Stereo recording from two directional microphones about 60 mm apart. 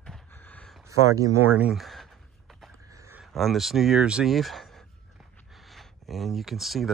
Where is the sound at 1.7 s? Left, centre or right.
Centre.